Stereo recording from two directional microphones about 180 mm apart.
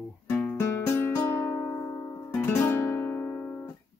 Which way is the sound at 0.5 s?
15° left (ahead or behind).